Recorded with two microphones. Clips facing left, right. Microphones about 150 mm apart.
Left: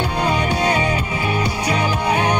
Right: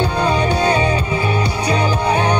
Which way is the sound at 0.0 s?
30° right (ahead or behind).